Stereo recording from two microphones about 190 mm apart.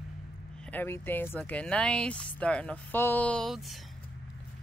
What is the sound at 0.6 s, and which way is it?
Speech, 10° left (ahead or behind).